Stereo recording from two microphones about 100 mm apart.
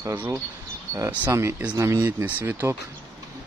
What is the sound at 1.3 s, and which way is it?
Speech, 25° right (ahead or behind).